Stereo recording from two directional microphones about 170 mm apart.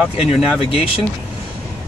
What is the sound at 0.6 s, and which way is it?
Speech, 35° left (ahead or behind).